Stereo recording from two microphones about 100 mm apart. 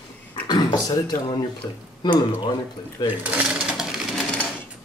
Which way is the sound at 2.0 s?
50° left (ahead or behind).